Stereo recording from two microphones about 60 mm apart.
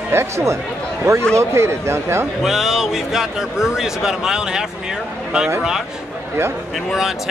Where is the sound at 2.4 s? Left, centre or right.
Centre.